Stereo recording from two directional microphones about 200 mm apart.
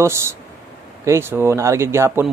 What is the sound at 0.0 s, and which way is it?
Speech, 15° right (ahead or behind).